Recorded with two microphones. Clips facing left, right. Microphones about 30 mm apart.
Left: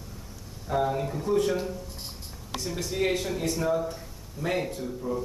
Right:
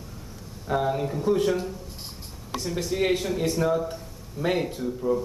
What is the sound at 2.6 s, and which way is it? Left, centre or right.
A man's voice, centre.